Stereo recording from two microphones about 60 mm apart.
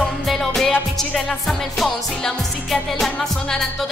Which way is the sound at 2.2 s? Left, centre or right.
Centre.